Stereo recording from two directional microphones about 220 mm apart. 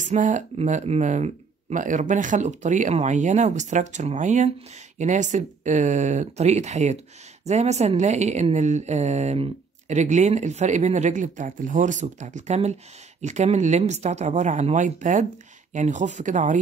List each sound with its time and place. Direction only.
0.0 s speech: 35° right (ahead or behind)